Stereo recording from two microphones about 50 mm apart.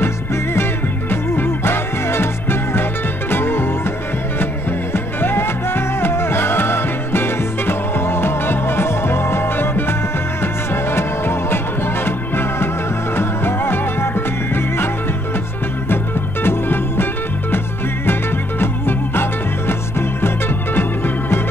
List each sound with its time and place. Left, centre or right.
1.3 s music: left
16.4 s music: left
18.6 s music: left